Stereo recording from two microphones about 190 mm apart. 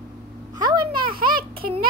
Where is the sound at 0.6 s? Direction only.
25° right (ahead or behind).